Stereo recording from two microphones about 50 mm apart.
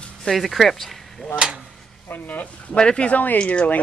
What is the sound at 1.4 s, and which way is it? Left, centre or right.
Speech, right.